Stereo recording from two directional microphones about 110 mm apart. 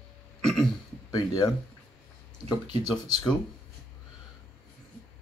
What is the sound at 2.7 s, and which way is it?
Speech, 40° left (ahead or behind).